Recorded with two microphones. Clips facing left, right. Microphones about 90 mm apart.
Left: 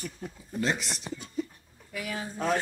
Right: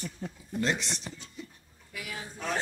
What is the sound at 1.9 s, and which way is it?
Speech, 45° left (ahead or behind).